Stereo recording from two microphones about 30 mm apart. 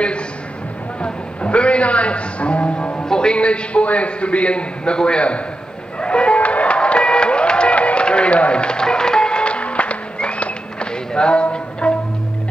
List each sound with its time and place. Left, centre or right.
1.0 s music: left
3.1 s music: left
3.3 s a man's voice: left
5.9 s music: left
11.1 s a man's voice: left
11.8 s music: left